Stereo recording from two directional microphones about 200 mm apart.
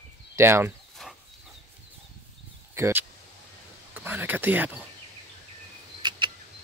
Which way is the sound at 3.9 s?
10° right (ahead or behind).